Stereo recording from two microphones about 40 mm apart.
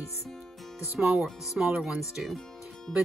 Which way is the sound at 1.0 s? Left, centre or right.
Centre.